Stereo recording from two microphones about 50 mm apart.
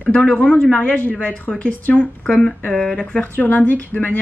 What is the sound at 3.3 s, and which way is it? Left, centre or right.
Speech, left.